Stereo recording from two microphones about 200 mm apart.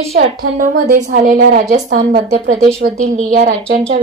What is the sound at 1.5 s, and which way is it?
A woman's voice, 55° right (ahead or behind).